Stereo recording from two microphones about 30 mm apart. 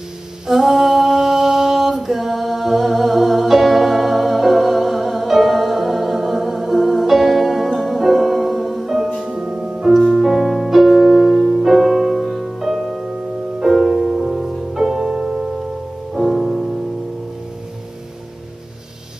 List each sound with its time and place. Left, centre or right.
0.5 s a sound: centre
9.3 s music: right
10.2 s music: centre